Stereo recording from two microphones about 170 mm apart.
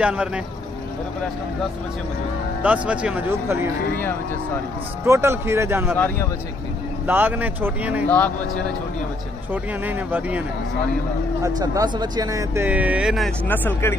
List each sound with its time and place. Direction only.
0.0 s speech: 5° right (ahead or behind)
2.6 s speech: 10° right (ahead or behind)
5.0 s speech: 15° right (ahead or behind)
5.9 s speech: 10° left (ahead or behind)
7.1 s speech: 10° right (ahead or behind)
9.5 s speech: 10° right (ahead or behind)
11.4 s speech: 20° right (ahead or behind); by 13.3 s 5° right (ahead or behind)
13.5 s speech: 15° left (ahead or behind)